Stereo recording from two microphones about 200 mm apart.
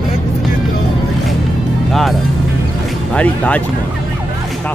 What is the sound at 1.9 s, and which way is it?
Speech, centre (ahead or behind).